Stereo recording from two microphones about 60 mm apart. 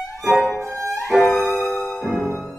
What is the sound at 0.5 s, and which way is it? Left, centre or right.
Music, right.